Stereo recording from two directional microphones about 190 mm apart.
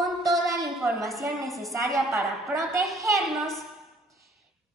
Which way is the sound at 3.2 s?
Centre (ahead or behind).